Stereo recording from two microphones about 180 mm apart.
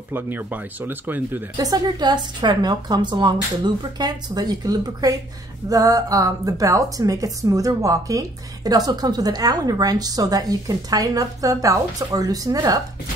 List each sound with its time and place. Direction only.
0.1 s speech: 10° right (ahead or behind)
1.7 s speech: 25° right (ahead or behind)